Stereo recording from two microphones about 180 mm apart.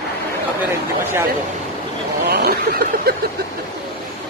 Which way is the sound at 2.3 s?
60° right (ahead or behind).